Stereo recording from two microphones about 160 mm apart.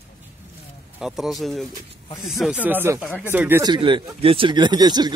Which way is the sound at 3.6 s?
30° right (ahead or behind).